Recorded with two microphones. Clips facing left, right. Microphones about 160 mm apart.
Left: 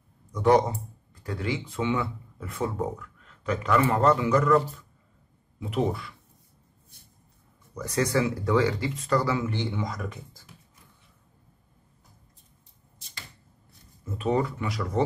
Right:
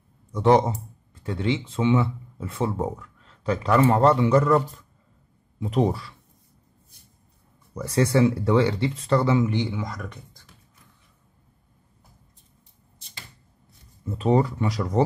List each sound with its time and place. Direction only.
0.3 s speech: 25° right (ahead or behind)
5.6 s speech: 35° right (ahead or behind)
7.7 s speech: 30° right (ahead or behind)
9.8 s speech: centre (ahead or behind)
14.1 s speech: 35° right (ahead or behind)